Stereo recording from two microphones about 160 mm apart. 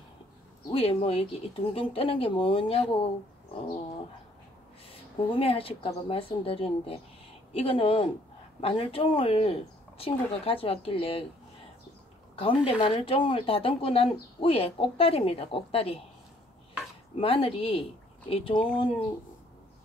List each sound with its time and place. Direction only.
0.7 s speech: 35° left (ahead or behind)
5.3 s speech: 35° left (ahead or behind)
12.4 s speech: 35° left (ahead or behind)
17.2 s speech: 35° left (ahead or behind)